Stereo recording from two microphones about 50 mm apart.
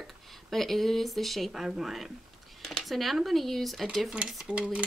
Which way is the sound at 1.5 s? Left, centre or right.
Centre.